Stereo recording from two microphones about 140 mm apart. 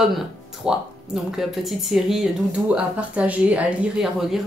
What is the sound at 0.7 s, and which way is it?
Speech, 5° right (ahead or behind).